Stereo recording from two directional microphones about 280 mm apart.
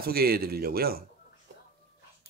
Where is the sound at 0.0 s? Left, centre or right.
Right.